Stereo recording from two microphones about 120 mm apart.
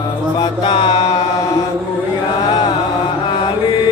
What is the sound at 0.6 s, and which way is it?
Music, 40° left (ahead or behind).